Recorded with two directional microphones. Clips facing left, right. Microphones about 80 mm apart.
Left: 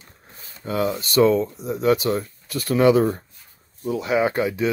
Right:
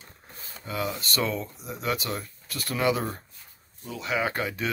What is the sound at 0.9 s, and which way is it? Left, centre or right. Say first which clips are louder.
Speech: left 12 dB; left.